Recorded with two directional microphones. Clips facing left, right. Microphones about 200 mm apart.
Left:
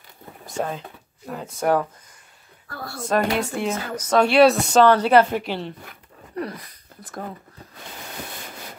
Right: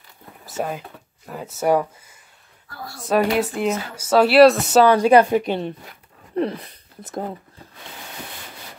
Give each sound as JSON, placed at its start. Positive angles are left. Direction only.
{"t": 0.5, "sound": "speech", "side_deg": -5}
{"t": 3.0, "sound": "speech", "side_deg": -5}